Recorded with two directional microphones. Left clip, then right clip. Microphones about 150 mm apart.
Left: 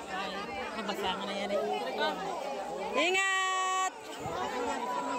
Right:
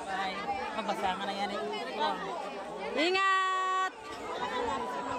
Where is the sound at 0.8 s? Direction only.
20° right (ahead or behind).